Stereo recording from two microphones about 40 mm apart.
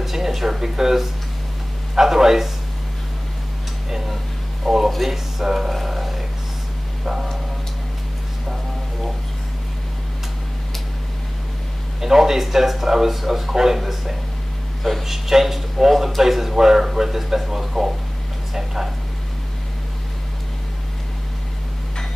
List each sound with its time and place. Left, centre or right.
0.0 s speech: centre
3.9 s speech: centre
12.0 s a man's voice: centre